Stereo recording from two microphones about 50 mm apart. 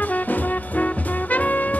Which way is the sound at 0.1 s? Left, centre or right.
Left.